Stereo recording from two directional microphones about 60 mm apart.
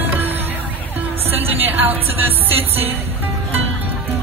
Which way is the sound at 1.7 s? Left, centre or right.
Right.